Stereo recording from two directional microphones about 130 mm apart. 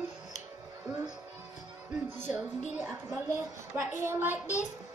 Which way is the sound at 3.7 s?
20° right (ahead or behind).